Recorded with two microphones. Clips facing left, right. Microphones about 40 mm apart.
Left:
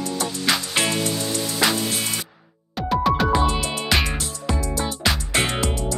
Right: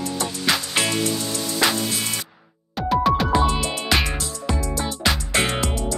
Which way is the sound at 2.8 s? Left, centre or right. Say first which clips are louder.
Right 1 dB; centre.